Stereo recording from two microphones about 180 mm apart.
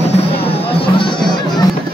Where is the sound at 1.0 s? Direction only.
25° left (ahead or behind).